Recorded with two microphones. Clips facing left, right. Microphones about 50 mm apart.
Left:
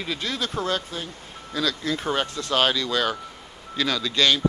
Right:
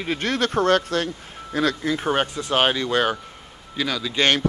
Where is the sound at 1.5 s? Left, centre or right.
Right.